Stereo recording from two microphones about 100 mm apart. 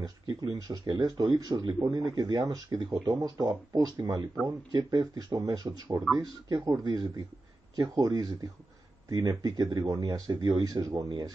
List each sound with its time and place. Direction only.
0.0 s speech: 40° right (ahead or behind)